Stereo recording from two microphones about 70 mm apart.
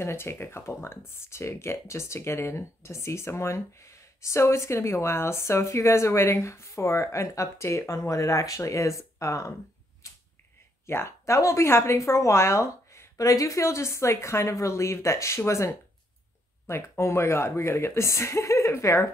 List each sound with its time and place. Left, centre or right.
0.0 s speech: left
10.9 s speech: left